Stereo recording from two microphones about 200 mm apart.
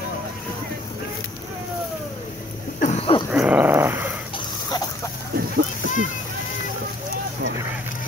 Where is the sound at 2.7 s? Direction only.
35° left (ahead or behind).